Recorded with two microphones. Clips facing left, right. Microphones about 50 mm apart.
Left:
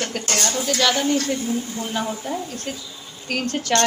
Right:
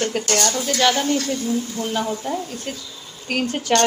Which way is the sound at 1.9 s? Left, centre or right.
Centre.